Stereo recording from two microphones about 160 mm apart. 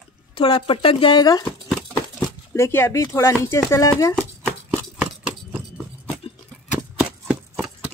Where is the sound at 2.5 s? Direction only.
15° left (ahead or behind).